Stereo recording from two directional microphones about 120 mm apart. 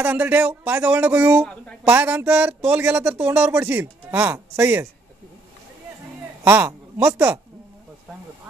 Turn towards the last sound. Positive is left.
turn(degrees=-20)  # may be behind; listen again after turning